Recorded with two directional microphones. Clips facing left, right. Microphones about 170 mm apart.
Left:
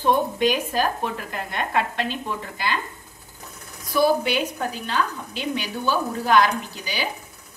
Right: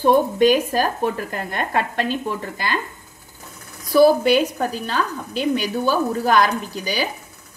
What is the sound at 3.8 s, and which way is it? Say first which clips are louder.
A woman's voice: right 6 dB; 40° right (ahead or behind).